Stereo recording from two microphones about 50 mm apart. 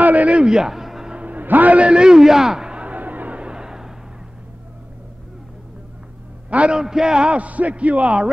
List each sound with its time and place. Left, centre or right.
0.0 s a sound: right
0.5 s music: centre
1.1 s a man's voice: right
2.9 s a sound: right; by 3.9 s centre
6.5 s a man's voice: right
6.8 s a man's voice: centre